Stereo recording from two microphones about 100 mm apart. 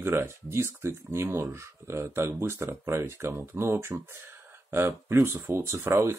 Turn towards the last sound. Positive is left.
turn(degrees=-30)  # may be behind; listen again after turning